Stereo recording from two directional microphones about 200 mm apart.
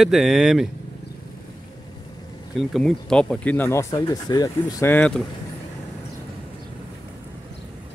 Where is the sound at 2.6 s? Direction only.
Centre (ahead or behind).